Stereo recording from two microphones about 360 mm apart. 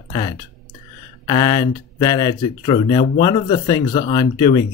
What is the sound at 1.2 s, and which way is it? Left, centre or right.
Speech, centre.